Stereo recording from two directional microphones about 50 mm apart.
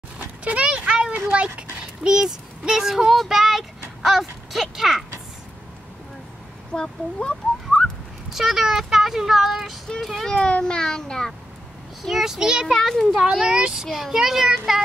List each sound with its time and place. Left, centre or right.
0.4 s a sound: right
1.3 s dog: right
2.1 s a child's voice: centre
6.7 s speech: centre
8.3 s a child's voice: centre
10.2 s a child's voice: centre
12.0 s a child's voice: centre
12.7 s a child's voice: centre
13.1 s a child's voice: centre